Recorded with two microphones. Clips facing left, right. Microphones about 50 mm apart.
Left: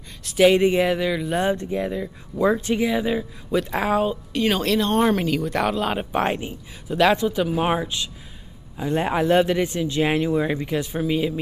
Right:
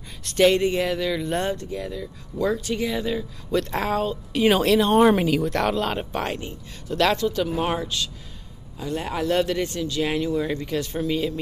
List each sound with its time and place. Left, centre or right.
0.2 s speech: centre
0.5 s speech: centre
1.5 s speech: left
3.4 s speech: centre
4.3 s speech: centre